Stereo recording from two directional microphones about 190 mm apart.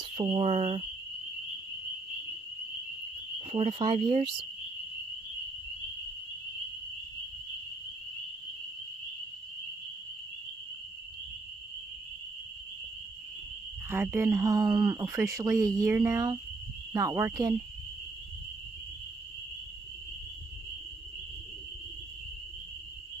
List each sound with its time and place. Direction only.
0.1 s speech: 30° right (ahead or behind)
3.3 s speech: 30° right (ahead or behind)
13.8 s speech: 10° right (ahead or behind)